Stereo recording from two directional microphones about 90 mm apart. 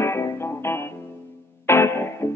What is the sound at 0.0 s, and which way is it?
Music, 30° left (ahead or behind).